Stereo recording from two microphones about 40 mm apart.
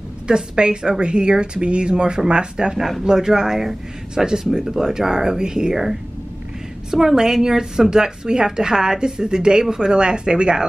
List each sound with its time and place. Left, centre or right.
0.3 s a woman's voice: right
6.9 s a woman's voice: centre